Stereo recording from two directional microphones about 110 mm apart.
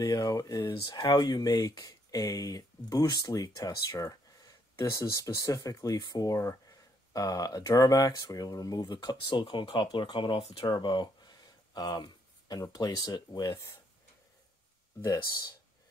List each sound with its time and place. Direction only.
0.0 s speech: 35° left (ahead or behind)
10.4 s speech: 65° left (ahead or behind)
10.7 s a sound: 45° left (ahead or behind)
12.7 s speech: 35° left (ahead or behind)
15.0 s speech: 40° left (ahead or behind)